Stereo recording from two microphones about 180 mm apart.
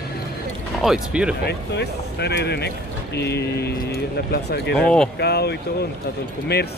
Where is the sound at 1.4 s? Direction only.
65° left (ahead or behind).